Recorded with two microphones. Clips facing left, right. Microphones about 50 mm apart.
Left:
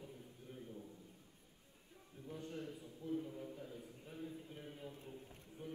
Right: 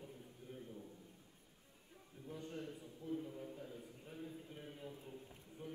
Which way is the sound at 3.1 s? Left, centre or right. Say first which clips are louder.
Left 2 dB; centre.